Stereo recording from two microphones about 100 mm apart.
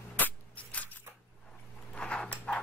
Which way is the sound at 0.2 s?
15° left (ahead or behind).